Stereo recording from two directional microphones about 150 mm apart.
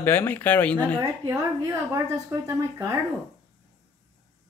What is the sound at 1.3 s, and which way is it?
Speech, 20° right (ahead or behind).